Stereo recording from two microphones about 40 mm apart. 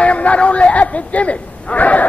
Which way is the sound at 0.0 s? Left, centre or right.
Left.